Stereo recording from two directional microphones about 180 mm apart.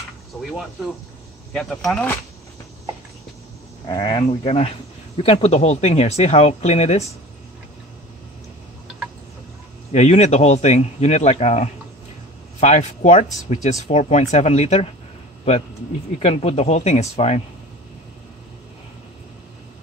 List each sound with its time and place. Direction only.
1.5 s speech: 5° left (ahead or behind)
3.8 s speech: 20° left (ahead or behind); by 7.1 s 35° left (ahead or behind)
9.9 s speech: 40° left (ahead or behind)
16.2 s speech: 35° left (ahead or behind)